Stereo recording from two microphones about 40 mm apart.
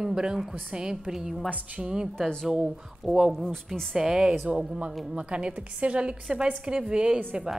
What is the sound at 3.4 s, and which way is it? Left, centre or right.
Speech, centre.